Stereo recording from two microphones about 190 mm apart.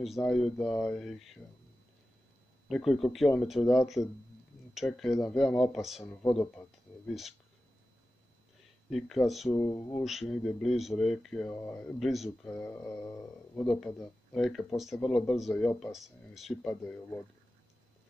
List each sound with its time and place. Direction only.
0.0 s speech: centre (ahead or behind)
2.7 s speech: centre (ahead or behind)
8.9 s speech: centre (ahead or behind)
9.6 s speech: 20° left (ahead or behind)
10.3 s speech: centre (ahead or behind)
12.4 s speech: 15° left (ahead or behind)
13.7 s speech: centre (ahead or behind)